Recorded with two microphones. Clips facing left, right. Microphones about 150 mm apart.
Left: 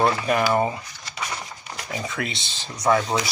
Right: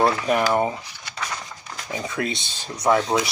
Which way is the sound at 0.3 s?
15° right (ahead or behind).